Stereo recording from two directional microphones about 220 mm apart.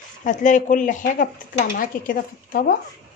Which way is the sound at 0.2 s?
35° left (ahead or behind).